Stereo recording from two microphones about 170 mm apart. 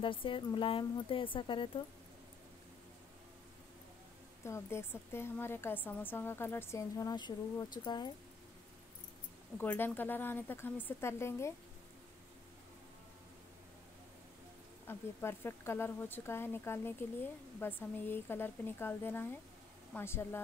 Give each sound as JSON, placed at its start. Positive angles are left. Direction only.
{"t": 0.0, "sound": "speech", "side_deg": 30}
{"t": 4.5, "sound": "speech", "side_deg": 15}
{"t": 9.6, "sound": "speech", "side_deg": 10}
{"t": 14.9, "sound": "speech", "side_deg": 15}